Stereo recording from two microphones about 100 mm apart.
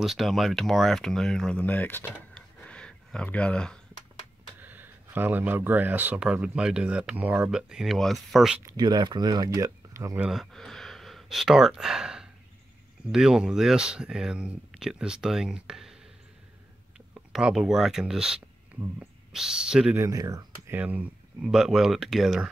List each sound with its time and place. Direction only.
0.0 s speech: centre (ahead or behind)
1.6 s speech: 20° left (ahead or behind)
2.3 s a sound: 10° left (ahead or behind)
4.6 s speech: 20° right (ahead or behind); by 8.5 s centre (ahead or behind)
8.6 s speech: 40° right (ahead or behind)
10.3 s speech: centre (ahead or behind)
17.1 s speech: 10° right (ahead or behind)
20.0 s speech: 35° right (ahead or behind)
20.6 s speech: 15° right (ahead or behind)
21.5 s speech: 5° right (ahead or behind)